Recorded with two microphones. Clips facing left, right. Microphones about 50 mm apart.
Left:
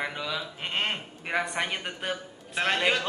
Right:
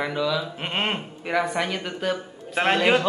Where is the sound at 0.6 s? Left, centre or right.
Centre.